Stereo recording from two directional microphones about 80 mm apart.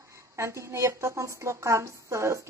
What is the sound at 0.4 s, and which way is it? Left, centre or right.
A woman's voice, right.